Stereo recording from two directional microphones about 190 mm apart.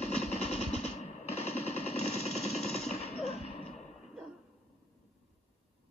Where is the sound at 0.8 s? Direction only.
35° left (ahead or behind).